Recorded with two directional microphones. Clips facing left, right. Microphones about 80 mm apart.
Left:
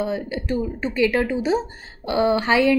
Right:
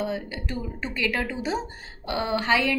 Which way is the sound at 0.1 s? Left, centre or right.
Left.